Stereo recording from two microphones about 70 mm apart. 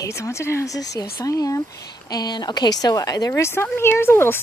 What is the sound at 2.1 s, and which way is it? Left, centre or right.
A woman's voice, left.